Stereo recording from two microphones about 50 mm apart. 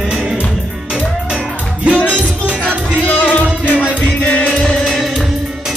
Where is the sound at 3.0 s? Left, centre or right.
Left.